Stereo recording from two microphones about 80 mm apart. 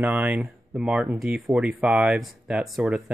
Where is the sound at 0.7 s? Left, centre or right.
Centre.